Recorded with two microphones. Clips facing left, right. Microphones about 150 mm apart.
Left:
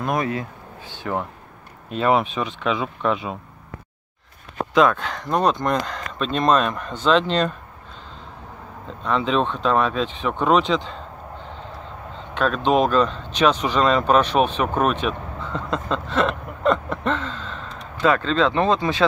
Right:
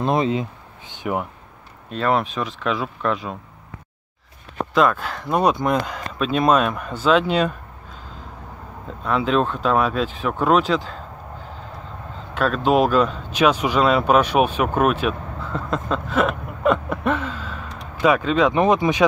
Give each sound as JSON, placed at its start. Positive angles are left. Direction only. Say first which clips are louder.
{"t": 0.0, "sound": "speech", "louder": "right 4 dB", "side_deg": -25}
{"t": 1.9, "sound": "speech", "louder": "left 1 dB", "side_deg": 5}
{"t": 4.6, "sound": "speech", "louder": "left 1 dB", "side_deg": 0}
{"t": 8.8, "sound": "speech", "louder": "right 1 dB", "side_deg": -5}
{"t": 12.4, "sound": "speech", "louder": "right 1 dB", "side_deg": -5}